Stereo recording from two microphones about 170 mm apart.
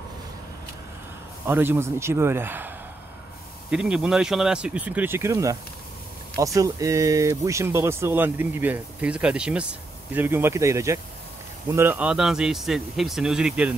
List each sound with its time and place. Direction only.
1.4 s speech: 15° right (ahead or behind)
3.7 s a man's voice: 5° right (ahead or behind)